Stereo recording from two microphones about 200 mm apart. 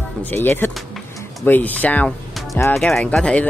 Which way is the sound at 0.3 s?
10° left (ahead or behind).